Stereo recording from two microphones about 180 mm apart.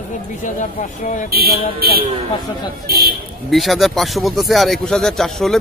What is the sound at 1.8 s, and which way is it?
Speech, 55° right (ahead or behind).